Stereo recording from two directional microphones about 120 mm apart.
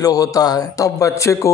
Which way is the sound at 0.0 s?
30° left (ahead or behind).